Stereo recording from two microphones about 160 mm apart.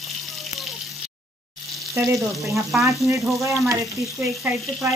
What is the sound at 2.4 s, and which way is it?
Speech, centre (ahead or behind).